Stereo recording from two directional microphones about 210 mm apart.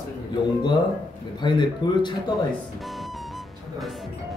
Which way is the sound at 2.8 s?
Centre (ahead or behind).